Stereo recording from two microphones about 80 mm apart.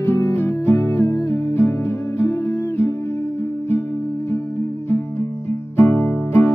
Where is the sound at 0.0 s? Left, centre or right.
Left.